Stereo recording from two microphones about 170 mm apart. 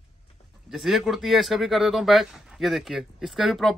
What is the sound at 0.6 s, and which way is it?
Speech, centre (ahead or behind).